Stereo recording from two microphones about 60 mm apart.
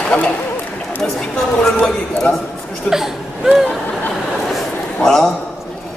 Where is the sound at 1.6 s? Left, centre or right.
Centre.